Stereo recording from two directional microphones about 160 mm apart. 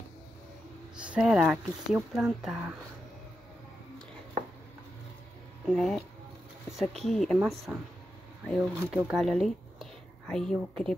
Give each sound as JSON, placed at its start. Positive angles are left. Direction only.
{"t": 0.9, "sound": "speech", "side_deg": -5}
{"t": 5.7, "sound": "speech", "side_deg": 0}
{"t": 7.1, "sound": "speech", "side_deg": 5}